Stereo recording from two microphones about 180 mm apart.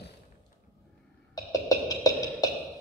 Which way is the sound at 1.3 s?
20° left (ahead or behind).